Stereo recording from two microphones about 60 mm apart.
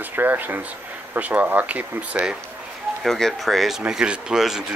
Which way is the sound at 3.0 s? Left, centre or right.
Centre.